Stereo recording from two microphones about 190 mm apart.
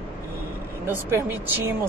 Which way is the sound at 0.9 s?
10° right (ahead or behind).